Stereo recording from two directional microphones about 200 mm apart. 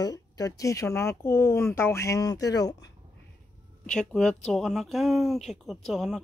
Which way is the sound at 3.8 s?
5° left (ahead or behind).